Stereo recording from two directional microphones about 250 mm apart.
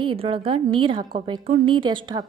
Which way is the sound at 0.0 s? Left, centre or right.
Right.